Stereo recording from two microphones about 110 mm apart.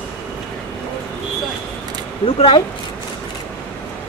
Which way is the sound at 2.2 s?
55° left (ahead or behind).